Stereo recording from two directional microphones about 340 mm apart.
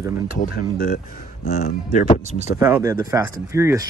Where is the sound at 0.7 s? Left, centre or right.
Left.